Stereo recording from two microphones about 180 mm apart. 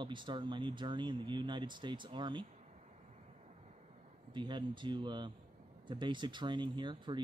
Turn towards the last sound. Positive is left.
turn(degrees=-25)  # may be behind; listen again after turning